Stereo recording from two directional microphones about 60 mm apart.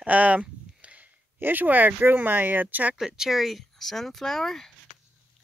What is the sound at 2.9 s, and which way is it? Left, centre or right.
Speech, centre.